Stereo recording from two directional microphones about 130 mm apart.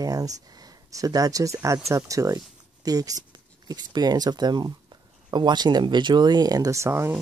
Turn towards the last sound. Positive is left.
turn(degrees=-20)  # may be behind; listen again after turning